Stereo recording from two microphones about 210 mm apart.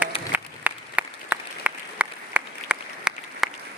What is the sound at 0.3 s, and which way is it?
Applause, 5° right (ahead or behind).